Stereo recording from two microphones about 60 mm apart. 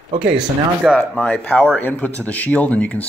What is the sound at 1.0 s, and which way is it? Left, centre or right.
Speech, centre.